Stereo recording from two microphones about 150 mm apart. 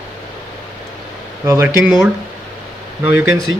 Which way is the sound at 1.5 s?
15° right (ahead or behind).